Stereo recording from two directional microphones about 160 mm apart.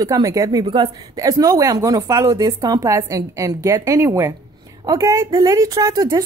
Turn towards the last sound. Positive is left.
turn(degrees=-20)  # may be behind; listen again after turning